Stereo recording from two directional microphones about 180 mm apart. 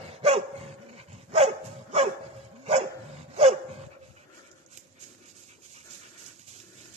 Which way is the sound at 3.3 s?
35° right (ahead or behind).